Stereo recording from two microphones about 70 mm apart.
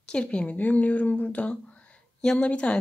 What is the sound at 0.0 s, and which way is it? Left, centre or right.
A woman's voice, centre.